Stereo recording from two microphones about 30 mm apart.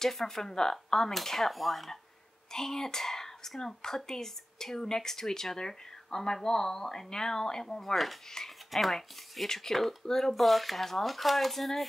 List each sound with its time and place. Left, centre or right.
0.0 s speech: centre
2.5 s speech: centre
7.8 s speech: centre
10.3 s speech: centre